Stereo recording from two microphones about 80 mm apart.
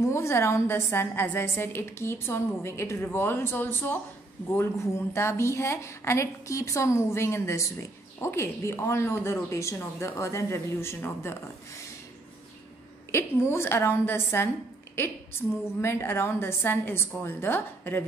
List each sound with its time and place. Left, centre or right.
0.0 s a woman's voice: left
4.6 s a woman's voice: left
13.1 s a woman's voice: left